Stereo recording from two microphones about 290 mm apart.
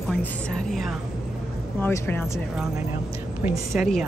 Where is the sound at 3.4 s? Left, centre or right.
Centre.